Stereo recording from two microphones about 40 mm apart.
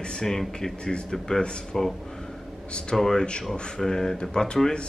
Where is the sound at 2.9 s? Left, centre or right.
Centre.